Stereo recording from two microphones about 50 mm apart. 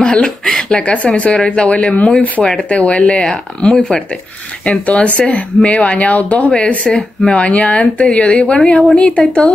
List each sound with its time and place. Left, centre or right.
0.0 s speech: left
3.3 s speech: centre
4.8 s speech: left